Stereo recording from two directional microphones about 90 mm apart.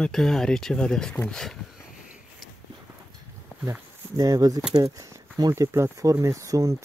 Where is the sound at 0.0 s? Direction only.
5° left (ahead or behind).